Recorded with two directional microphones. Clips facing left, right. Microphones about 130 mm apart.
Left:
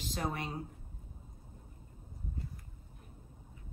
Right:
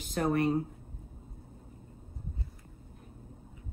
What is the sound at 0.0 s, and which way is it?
Speech, 55° right (ahead or behind).